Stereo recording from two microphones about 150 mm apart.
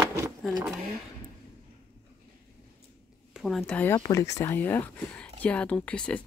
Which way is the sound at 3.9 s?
25° left (ahead or behind).